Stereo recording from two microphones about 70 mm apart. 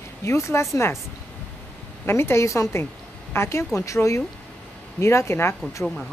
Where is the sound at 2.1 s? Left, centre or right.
Left.